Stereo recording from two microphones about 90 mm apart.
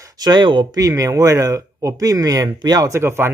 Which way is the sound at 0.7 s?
40° right (ahead or behind).